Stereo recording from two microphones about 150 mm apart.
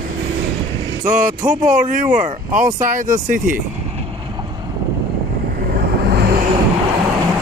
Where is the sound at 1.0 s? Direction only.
60° right (ahead or behind).